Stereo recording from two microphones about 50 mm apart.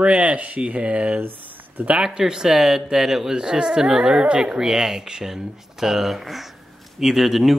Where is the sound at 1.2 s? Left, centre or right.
Right.